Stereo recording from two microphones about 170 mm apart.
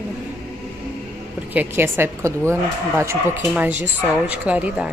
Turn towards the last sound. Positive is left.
turn(degrees=-5)  # may be behind; listen again after turning